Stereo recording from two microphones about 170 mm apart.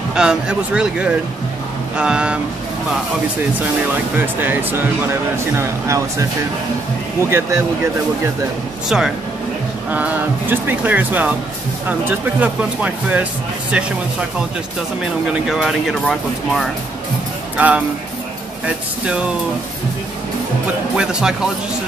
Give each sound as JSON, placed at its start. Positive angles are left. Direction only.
{"t": 0.1, "sound": "speech", "side_deg": -5}
{"t": 3.9, "sound": "speech", "side_deg": -10}
{"t": 7.2, "sound": "speech", "side_deg": -15}
{"t": 8.8, "sound": "speech", "side_deg": -5}
{"t": 15.5, "sound": "speech", "side_deg": 0}
{"t": 19.0, "sound": "speech", "side_deg": -5}
{"t": 20.9, "sound": "speech", "side_deg": -5}